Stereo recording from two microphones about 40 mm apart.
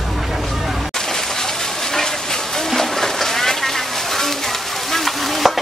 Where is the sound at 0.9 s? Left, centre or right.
Centre.